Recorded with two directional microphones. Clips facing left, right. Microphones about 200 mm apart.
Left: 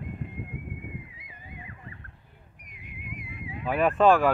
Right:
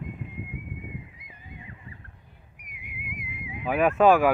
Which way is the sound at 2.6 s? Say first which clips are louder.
Even; 10° right (ahead or behind).